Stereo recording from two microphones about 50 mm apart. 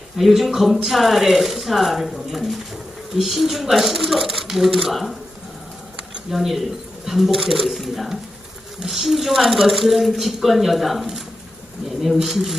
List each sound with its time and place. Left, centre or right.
0.2 s speech: centre
6.3 s speech: centre